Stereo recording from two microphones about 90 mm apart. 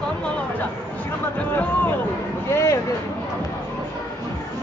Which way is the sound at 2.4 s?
30° left (ahead or behind).